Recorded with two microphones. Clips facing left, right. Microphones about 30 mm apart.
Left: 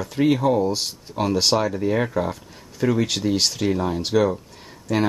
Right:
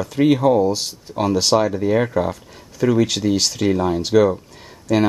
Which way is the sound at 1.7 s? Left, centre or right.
Centre.